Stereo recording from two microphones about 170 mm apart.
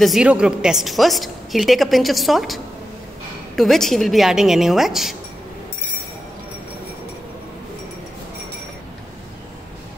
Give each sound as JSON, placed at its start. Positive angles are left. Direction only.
{"t": 0.0, "sound": "a woman's voice", "side_deg": -5}